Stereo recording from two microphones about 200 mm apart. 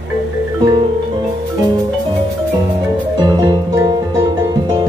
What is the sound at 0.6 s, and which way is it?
Music, 20° right (ahead or behind).